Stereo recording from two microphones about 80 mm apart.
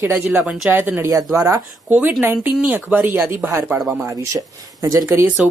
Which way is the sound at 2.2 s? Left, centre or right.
Right.